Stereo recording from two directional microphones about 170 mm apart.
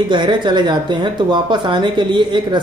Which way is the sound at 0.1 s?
25° right (ahead or behind).